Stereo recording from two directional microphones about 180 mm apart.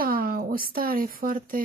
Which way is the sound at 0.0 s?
55° right (ahead or behind).